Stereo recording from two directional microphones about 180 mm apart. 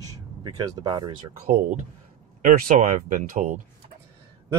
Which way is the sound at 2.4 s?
45° right (ahead or behind).